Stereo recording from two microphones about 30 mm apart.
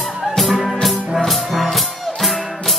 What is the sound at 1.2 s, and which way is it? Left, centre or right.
Music, centre.